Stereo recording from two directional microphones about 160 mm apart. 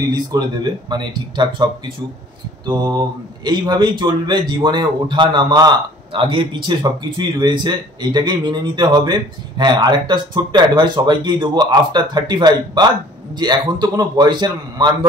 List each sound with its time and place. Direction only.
0.1 s speech: 25° right (ahead or behind)